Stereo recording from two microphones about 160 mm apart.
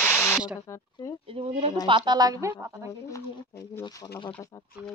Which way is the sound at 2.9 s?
20° left (ahead or behind).